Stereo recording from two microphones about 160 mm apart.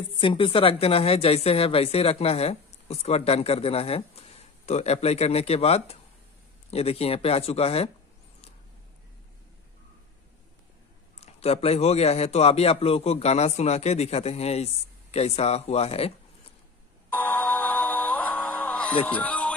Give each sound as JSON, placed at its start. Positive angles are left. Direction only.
{"t": 0.2, "sound": "a woman's voice", "side_deg": 35}
{"t": 11.1, "sound": "a woman's voice", "side_deg": 40}
{"t": 17.1, "sound": "music", "side_deg": 10}
{"t": 19.0, "sound": "speech", "side_deg": 10}